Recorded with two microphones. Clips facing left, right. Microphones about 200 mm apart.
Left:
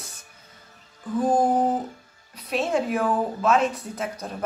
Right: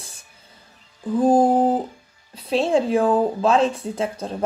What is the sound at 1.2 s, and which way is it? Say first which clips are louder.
Speech: right 5 dB; 30° right (ahead or behind).